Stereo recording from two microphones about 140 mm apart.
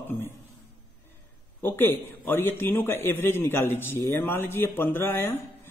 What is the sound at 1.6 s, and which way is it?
A man's voice, 15° left (ahead or behind).